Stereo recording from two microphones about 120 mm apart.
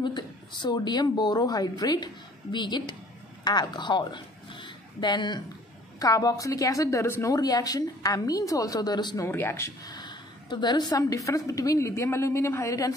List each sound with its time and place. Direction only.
0.0 s a woman's voice: 40° left (ahead or behind)
9.2 s a woman's voice: 20° left (ahead or behind)
9.8 s a woman's voice: 35° left (ahead or behind)